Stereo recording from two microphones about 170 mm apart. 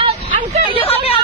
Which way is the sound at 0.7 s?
35° left (ahead or behind).